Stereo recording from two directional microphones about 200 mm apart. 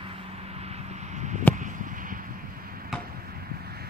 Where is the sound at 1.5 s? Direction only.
40° right (ahead or behind).